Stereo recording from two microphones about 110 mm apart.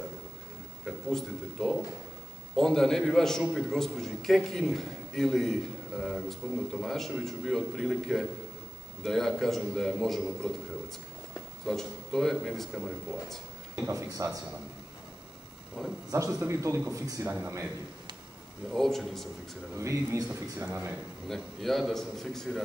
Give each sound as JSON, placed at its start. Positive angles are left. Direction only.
{"t": 0.8, "sound": "a man's voice", "side_deg": 0}
{"t": 11.6, "sound": "a man's voice", "side_deg": 5}
{"t": 13.8, "sound": "speech", "side_deg": -25}
{"t": 15.8, "sound": "speech", "side_deg": 5}
{"t": 16.1, "sound": "speech", "side_deg": -30}
{"t": 18.7, "sound": "a man's voice", "side_deg": 5}
{"t": 19.8, "sound": "speech", "side_deg": -30}
{"t": 21.3, "sound": "a man's voice", "side_deg": 0}